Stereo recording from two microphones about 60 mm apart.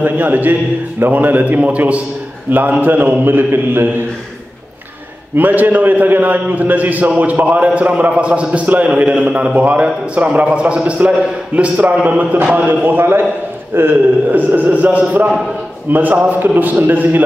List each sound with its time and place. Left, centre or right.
0.0 s a man's voice: right
5.3 s a man's voice: right